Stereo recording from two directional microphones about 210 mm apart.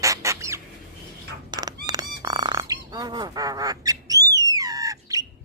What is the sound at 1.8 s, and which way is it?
Bird, 20° right (ahead or behind).